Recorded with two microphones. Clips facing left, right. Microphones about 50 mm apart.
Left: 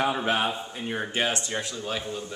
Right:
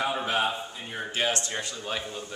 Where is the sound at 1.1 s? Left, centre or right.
Centre.